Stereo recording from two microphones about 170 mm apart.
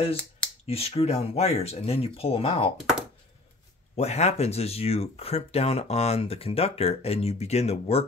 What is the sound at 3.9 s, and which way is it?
Speech, 40° left (ahead or behind).